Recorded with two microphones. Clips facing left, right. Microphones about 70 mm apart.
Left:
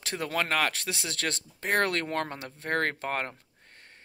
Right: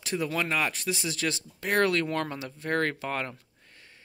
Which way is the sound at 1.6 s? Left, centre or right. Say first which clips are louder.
Right 2 dB; left.